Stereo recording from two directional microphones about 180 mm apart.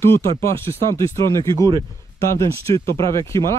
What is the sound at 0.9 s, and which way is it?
Speech, 15° left (ahead or behind).